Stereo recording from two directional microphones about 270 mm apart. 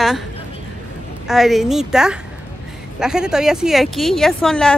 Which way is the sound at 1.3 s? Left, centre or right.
Centre.